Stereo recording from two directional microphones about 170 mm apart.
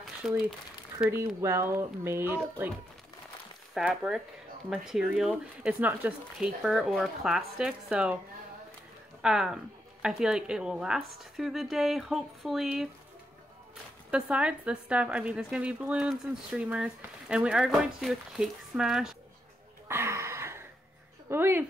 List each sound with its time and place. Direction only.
0.2 s speech: centre (ahead or behind)
1.1 s speech: 15° right (ahead or behind)
3.7 s speech: 5° right (ahead or behind)
9.2 s speech: 5° right (ahead or behind)
14.1 s speech: 5° right (ahead or behind)
19.9 s a sound: 15° right (ahead or behind)
21.3 s speech: 15° right (ahead or behind)